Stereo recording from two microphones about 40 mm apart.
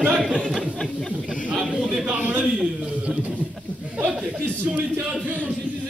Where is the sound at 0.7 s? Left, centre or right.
Centre.